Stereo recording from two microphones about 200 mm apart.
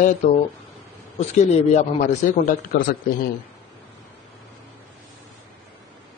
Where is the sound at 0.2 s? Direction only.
35° left (ahead or behind).